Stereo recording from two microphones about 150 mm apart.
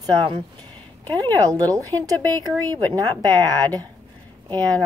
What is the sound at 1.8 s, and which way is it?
Speech, 10° left (ahead or behind).